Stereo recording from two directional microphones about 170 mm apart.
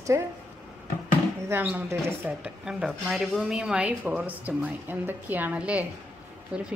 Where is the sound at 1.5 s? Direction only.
10° right (ahead or behind).